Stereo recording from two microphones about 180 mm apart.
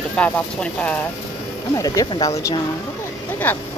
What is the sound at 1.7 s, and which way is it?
Speech, 20° left (ahead or behind).